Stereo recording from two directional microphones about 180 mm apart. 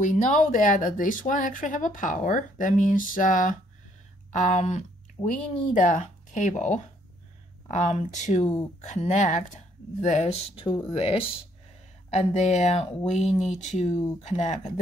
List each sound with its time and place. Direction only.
0.0 s speech: 45° left (ahead or behind)